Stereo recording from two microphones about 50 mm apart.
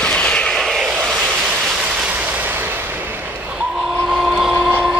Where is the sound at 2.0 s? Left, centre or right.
Right.